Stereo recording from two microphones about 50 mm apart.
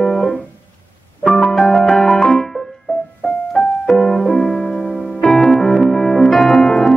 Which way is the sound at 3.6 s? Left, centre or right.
Centre.